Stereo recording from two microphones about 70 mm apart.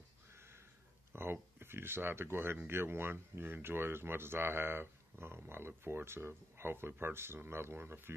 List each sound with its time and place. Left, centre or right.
1.1 s speech: right